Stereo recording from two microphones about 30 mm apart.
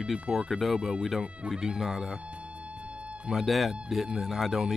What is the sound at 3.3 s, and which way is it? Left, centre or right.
Speech, centre.